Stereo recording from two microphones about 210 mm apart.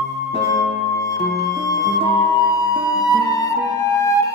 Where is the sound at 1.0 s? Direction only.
15° left (ahead or behind).